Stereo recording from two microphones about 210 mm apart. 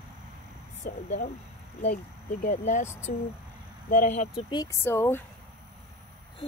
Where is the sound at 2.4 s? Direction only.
35° left (ahead or behind).